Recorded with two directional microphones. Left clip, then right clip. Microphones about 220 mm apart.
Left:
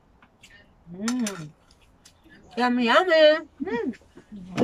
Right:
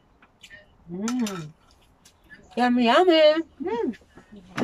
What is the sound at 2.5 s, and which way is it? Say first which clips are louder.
Speech: right 1 dB; 15° right (ahead or behind).